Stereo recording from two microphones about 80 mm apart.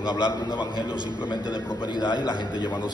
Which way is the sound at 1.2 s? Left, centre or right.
Left.